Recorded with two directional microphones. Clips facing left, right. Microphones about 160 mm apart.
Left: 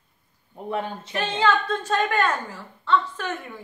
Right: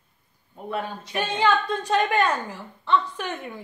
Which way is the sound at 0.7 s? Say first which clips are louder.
Left 1 dB; 25° left (ahead or behind).